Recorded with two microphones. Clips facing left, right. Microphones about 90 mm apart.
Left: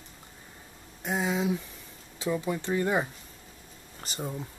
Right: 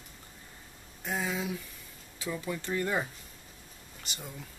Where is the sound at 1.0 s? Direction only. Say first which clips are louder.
Left 5 dB; 20° left (ahead or behind).